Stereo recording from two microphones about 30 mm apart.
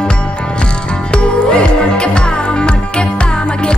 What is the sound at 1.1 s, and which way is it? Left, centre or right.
Music, left.